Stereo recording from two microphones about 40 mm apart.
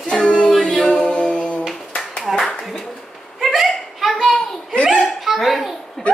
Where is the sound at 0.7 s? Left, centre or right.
Left.